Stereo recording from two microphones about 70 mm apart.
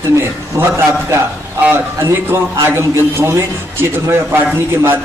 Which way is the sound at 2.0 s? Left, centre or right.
Right.